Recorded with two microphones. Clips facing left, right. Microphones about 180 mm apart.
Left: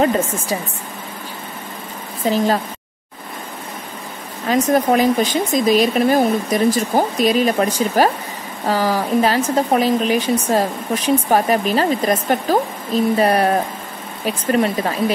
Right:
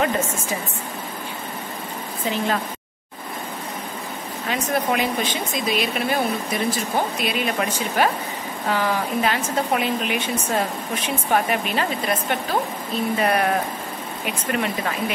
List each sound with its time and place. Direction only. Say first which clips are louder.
0.0 s speech: left 5 dB; 35° left (ahead or behind)
2.2 s speech: left 7 dB; 35° left (ahead or behind)
4.5 s speech: left 8 dB; 40° left (ahead or behind)